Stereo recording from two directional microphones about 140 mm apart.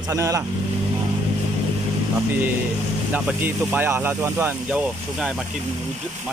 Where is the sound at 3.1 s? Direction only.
10° right (ahead or behind).